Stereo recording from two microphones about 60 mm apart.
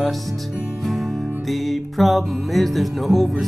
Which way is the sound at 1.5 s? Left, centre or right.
Centre.